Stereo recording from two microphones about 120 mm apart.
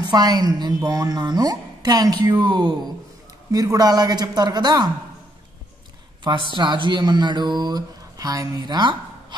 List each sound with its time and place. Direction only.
0.0 s a woman's voice: 35° right (ahead or behind)
6.2 s a woman's voice: 40° right (ahead or behind)